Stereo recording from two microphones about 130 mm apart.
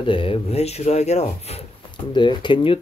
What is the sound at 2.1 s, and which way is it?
Speech, 35° left (ahead or behind).